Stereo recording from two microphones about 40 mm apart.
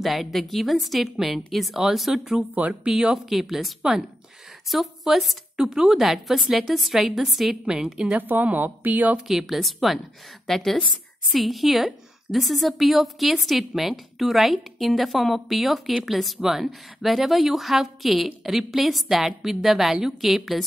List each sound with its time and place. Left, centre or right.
0.0 s a woman's voice: centre
5.9 s a woman's voice: centre
8.2 s speech: right
9.3 s a woman's voice: centre